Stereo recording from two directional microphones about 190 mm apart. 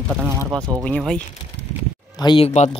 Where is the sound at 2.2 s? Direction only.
25° left (ahead or behind).